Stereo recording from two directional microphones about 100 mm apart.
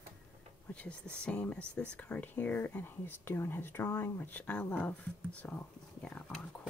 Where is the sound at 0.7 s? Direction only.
15° left (ahead or behind).